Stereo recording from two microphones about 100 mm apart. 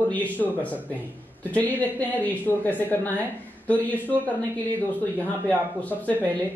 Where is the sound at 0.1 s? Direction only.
15° left (ahead or behind).